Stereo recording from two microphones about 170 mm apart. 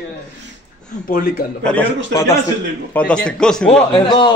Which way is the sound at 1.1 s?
60° left (ahead or behind).